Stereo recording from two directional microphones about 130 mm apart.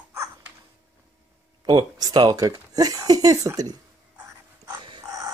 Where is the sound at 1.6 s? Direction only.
30° right (ahead or behind).